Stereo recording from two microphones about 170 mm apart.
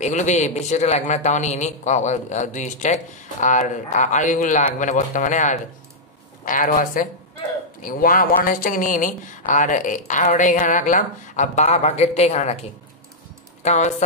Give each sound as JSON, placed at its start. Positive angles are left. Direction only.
{"t": 0.0, "sound": "a man's voice", "side_deg": 45}
{"t": 13.6, "sound": "speech", "side_deg": 45}